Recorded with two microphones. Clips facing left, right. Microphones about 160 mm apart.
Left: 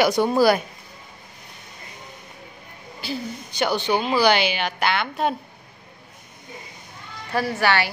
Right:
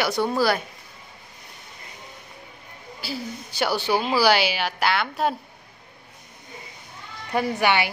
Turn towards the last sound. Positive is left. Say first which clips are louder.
# even
turn(degrees=-15)  # may be behind; listen again after turning